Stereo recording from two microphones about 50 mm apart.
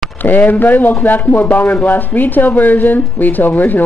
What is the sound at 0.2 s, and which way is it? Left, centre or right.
A man's voice, left.